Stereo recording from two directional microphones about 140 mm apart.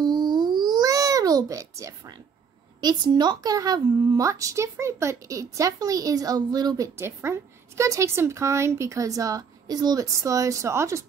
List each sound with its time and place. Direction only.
0.0 s a sound: 30° right (ahead or behind)
2.8 s speech: 30° right (ahead or behind)
7.0 s speech: 20° right (ahead or behind)